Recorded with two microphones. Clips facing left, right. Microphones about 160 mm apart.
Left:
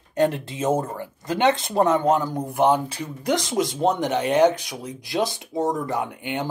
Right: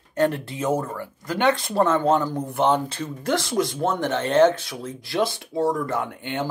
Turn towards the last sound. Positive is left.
turn(degrees=15)  # may be behind; listen again after turning